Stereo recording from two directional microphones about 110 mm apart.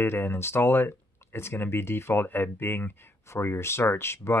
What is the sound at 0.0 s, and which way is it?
Speech, 20° left (ahead or behind).